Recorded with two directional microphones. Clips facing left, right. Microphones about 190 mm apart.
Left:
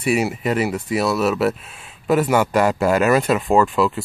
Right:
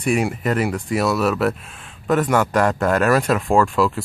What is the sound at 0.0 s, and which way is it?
Speech, 5° left (ahead or behind).